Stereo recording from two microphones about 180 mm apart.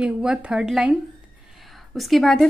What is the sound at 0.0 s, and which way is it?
A woman's voice, 5° right (ahead or behind).